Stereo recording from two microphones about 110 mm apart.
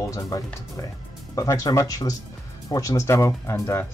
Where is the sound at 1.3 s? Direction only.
30° left (ahead or behind).